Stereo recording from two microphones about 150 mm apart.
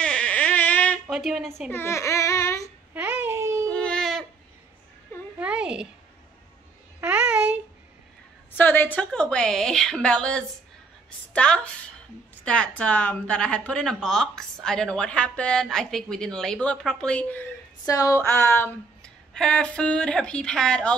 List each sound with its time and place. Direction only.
0.0 s music: 5° left (ahead or behind)
1.0 s a woman's voice: 5° right (ahead or behind)
1.7 s speech: 15° left (ahead or behind)
2.9 s babbling: 15° right (ahead or behind)
3.7 s a sound: 5° left (ahead or behind)
5.4 s a sound: 5° right (ahead or behind)
7.0 s babbling: 10° right (ahead or behind)
8.5 s a woman's voice: 10° left (ahead or behind)
17.8 s speech: 20° left (ahead or behind)
18.3 s a woman's voice: 10° left (ahead or behind)